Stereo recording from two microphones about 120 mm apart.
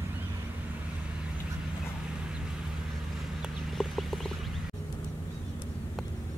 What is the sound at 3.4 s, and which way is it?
Chicken, centre (ahead or behind).